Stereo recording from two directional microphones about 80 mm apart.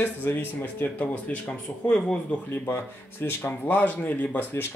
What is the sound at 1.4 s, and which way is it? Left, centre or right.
Speech, centre.